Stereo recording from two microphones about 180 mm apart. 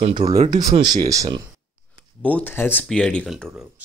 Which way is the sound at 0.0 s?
35° right (ahead or behind).